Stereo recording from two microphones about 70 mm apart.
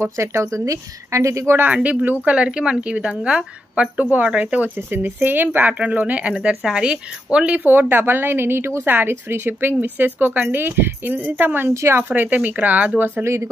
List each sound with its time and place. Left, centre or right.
0.0 s a woman's voice: right
1.6 s a woman's voice: right
11.7 s a woman's voice: right
12.0 s speech: right